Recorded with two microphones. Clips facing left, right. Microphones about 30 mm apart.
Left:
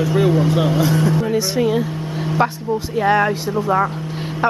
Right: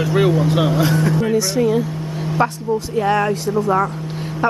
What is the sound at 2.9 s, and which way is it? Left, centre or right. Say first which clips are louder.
Speech: left 2 dB; centre.